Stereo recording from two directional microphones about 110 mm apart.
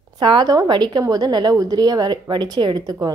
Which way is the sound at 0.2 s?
40° right (ahead or behind).